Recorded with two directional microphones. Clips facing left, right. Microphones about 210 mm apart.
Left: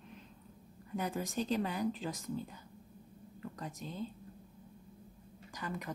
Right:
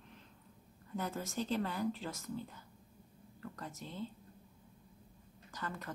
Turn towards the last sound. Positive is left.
turn(degrees=15)  # may be behind; listen again after turning